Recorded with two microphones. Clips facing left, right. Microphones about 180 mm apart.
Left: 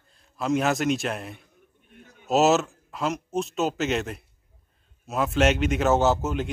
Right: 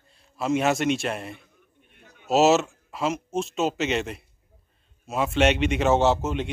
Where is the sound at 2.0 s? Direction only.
45° left (ahead or behind).